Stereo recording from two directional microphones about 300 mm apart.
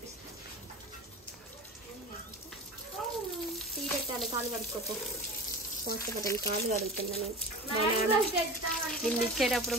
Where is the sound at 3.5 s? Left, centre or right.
Centre.